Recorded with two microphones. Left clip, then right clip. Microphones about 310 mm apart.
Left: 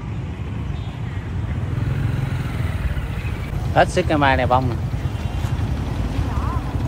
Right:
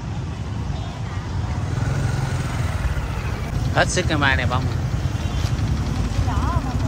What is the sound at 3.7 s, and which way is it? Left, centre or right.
Speech, centre.